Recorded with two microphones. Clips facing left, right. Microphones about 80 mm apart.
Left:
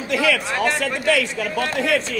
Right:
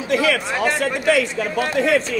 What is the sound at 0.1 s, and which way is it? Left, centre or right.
A man's voice, right.